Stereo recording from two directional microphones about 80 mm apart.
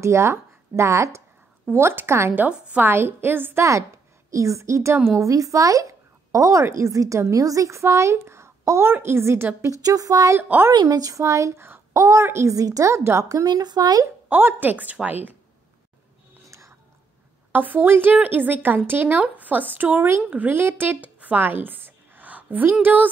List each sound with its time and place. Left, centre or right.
0.0 s a woman's voice: right
3.6 s a woman's voice: right
9.8 s a woman's voice: right
10.7 s a woman's voice: right
13.5 s speech: right
14.3 s a woman's voice: right
16.4 s whispering: right
17.5 s a woman's voice: right